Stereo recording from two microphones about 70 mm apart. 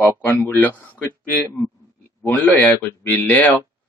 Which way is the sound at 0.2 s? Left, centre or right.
Left.